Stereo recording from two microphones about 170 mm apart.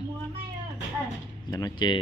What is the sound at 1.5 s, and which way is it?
Speech, 25° left (ahead or behind).